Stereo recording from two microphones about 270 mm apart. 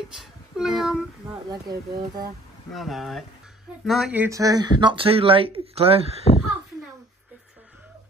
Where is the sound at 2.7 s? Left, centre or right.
Centre; by 6.1 s right.